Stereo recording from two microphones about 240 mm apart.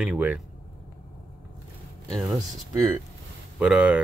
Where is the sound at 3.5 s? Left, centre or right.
Centre.